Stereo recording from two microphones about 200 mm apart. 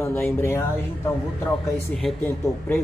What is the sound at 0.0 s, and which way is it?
Speech, 10° left (ahead or behind).